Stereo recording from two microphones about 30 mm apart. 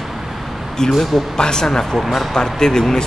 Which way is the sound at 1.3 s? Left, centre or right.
Left.